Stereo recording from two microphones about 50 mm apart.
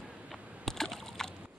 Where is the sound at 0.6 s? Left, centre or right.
Centre.